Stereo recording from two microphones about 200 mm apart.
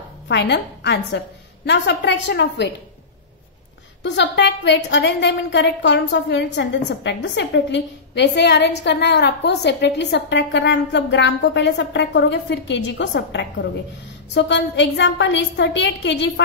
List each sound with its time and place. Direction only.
0.3 s a woman's voice: 60° left (ahead or behind)
4.0 s a woman's voice: 60° left (ahead or behind)